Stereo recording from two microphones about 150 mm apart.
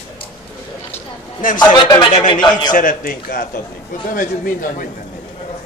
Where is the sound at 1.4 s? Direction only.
65° left (ahead or behind).